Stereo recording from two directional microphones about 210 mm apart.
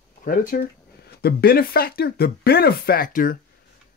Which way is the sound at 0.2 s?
40° left (ahead or behind).